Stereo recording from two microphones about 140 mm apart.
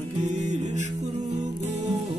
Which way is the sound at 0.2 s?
60° right (ahead or behind).